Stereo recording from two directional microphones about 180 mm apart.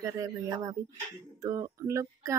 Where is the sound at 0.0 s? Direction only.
20° right (ahead or behind).